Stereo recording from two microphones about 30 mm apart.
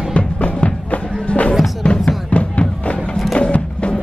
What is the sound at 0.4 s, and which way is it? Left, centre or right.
Music, left.